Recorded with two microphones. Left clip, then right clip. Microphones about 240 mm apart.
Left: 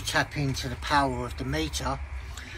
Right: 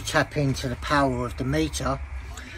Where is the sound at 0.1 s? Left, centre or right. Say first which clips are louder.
Right 4 dB; centre.